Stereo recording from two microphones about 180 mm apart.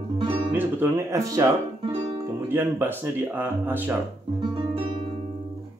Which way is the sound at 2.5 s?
10° right (ahead or behind).